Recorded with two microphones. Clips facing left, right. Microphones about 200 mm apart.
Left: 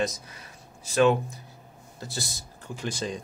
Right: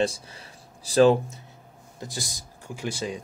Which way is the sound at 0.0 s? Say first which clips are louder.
Right 3 dB; 30° right (ahead or behind).